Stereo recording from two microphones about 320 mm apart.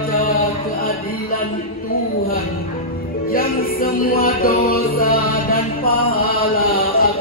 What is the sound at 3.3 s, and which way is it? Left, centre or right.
Music, left.